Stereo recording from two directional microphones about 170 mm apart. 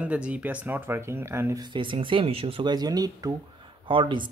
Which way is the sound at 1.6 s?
30° right (ahead or behind).